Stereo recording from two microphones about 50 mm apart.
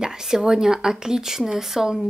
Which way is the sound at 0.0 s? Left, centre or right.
Centre.